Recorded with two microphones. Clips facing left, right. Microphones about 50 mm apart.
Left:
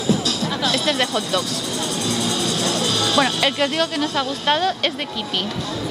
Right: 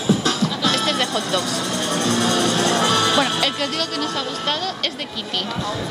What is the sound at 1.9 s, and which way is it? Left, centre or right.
Music, right.